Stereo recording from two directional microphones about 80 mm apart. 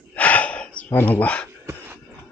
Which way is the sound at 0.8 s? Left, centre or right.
Left.